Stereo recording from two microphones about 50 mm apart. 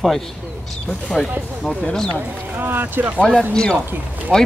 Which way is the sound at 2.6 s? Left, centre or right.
Right.